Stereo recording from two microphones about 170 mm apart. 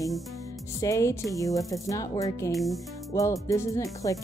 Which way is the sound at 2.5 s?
Centre (ahead or behind).